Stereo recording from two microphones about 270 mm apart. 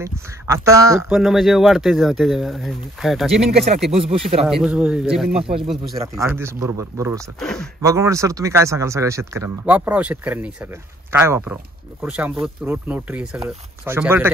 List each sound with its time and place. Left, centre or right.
0.0 s speech: centre
3.9 s speech: right
4.4 s speech: centre
5.3 s speech: right
5.9 s speech: centre
7.3 s speech: centre
7.8 s speech: centre